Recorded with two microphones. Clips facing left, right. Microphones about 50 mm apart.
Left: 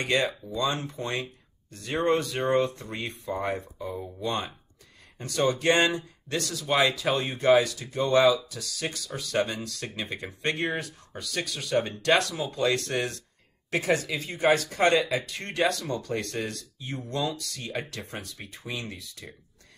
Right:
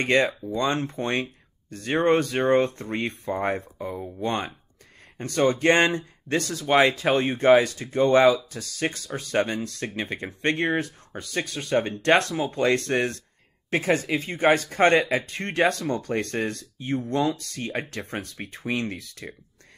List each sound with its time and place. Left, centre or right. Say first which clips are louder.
0.0 s speech: right 5 dB; right